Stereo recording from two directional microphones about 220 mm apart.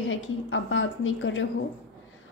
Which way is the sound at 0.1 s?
60° left (ahead or behind).